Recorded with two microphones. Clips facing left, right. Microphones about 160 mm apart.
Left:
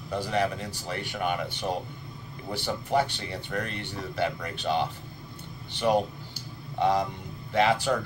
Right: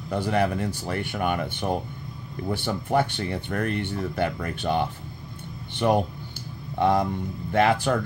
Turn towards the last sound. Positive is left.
turn(degrees=-55)  # may be behind; listen again after turning